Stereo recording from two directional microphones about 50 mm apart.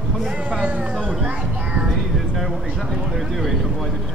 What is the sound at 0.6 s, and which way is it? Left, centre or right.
Speech, right.